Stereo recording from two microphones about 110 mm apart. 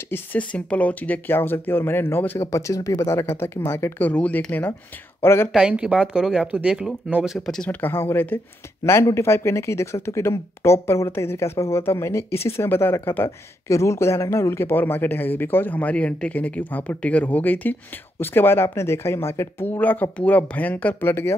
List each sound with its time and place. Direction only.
0.1 s speech: 15° left (ahead or behind)
5.5 s speech: 10° right (ahead or behind)
7.3 s speech: 5° left (ahead or behind)
7.8 s speech: 20° left (ahead or behind)